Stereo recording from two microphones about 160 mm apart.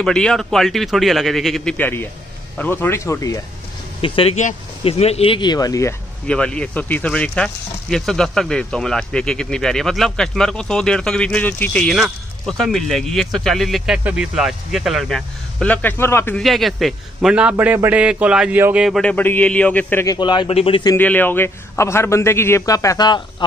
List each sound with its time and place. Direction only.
0.0 s a man's voice: 5° left (ahead or behind)
4.0 s speech: 35° left (ahead or behind)
6.2 s speech: 5° left (ahead or behind)
16.3 s speech: centre (ahead or behind)
20.2 s speech: 30° left (ahead or behind)
20.9 s a man's voice: 10° left (ahead or behind); by 23.2 s 25° left (ahead or behind)